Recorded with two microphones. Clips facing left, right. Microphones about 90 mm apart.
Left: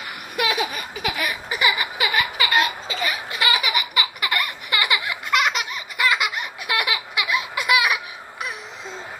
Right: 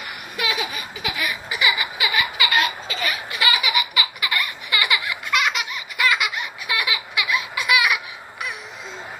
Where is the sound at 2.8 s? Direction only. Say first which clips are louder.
Left 1 dB; 25° left (ahead or behind).